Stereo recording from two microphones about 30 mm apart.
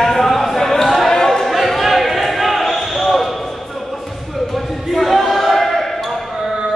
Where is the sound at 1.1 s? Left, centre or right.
Centre.